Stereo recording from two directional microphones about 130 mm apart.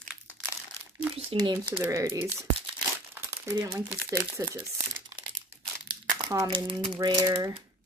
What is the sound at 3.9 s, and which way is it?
Speech, 20° right (ahead or behind).